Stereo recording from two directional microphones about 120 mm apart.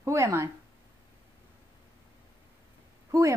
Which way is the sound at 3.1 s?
25° right (ahead or behind).